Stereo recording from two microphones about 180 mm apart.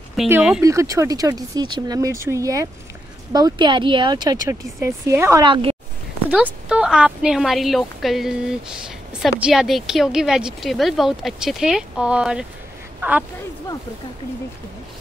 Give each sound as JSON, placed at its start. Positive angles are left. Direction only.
{"t": 0.3, "sound": "a woman's voice", "side_deg": -5}
{"t": 0.6, "sound": "speech", "side_deg": -15}
{"t": 5.4, "sound": "speech", "side_deg": -30}
{"t": 6.3, "sound": "a woman's voice", "side_deg": -5}